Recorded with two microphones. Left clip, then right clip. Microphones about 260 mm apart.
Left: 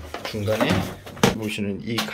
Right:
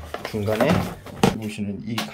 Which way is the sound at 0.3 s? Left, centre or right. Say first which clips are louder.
Right 1 dB; centre.